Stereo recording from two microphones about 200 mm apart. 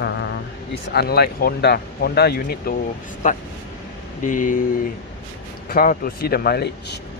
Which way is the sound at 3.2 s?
40° left (ahead or behind).